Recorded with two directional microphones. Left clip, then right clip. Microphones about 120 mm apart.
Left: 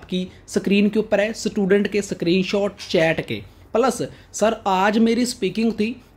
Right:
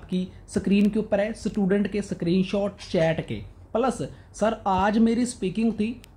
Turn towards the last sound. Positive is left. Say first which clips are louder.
# left 5 dB
turn(degrees=30)  # may be behind; listen again after turning